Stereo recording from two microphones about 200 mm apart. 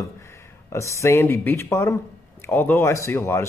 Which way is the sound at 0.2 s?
15° left (ahead or behind).